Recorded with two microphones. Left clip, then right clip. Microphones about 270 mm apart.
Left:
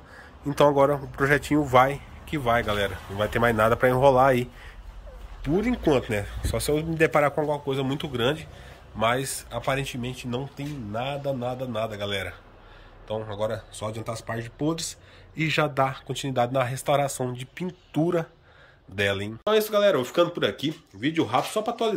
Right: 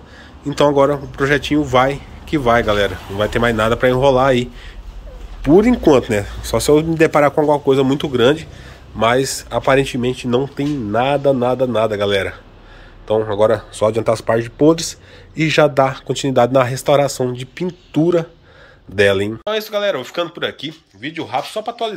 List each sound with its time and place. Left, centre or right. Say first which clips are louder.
0.5 s speech: right 6 dB; centre
5.6 s speech: right 10 dB; centre